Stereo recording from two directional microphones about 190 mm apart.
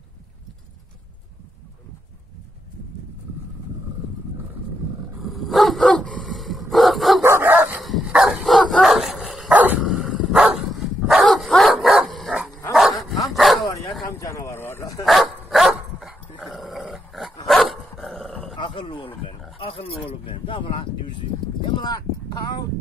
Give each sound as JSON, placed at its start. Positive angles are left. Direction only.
{"t": 5.2, "sound": "dog", "side_deg": 0}
{"t": 7.2, "sound": "dog", "side_deg": -10}
{"t": 13.7, "sound": "dog", "side_deg": 15}
{"t": 14.0, "sound": "bow-wow", "side_deg": 15}
{"t": 15.5, "sound": "dog", "side_deg": 0}
{"t": 18.6, "sound": "wild animals", "side_deg": 25}
{"t": 19.6, "sound": "a sound", "side_deg": 30}